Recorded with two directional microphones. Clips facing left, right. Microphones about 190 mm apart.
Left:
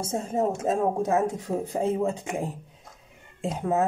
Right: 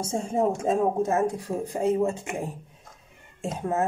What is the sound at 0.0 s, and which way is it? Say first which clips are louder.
Speech: right 1 dB; 5° left (ahead or behind).